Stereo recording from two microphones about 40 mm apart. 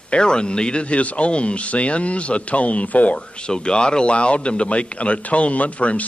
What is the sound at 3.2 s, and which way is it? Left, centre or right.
A man's voice, left.